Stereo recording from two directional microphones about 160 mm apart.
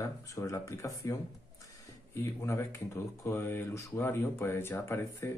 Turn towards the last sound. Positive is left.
turn(degrees=15)  # may be behind; listen again after turning